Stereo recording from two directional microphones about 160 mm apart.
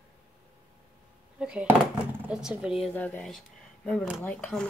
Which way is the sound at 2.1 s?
5° right (ahead or behind).